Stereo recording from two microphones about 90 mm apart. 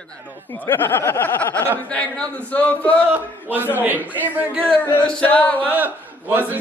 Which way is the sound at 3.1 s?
20° right (ahead or behind).